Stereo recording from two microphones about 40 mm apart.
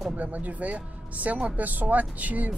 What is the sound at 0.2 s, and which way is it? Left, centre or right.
Speech, right.